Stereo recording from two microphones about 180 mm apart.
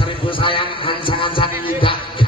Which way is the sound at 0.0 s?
30° left (ahead or behind).